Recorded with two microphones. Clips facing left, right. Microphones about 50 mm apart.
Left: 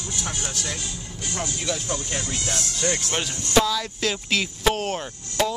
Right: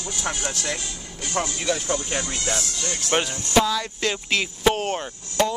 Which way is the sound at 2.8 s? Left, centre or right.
Left.